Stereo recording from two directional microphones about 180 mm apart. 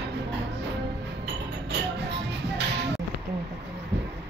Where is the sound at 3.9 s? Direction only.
75° right (ahead or behind).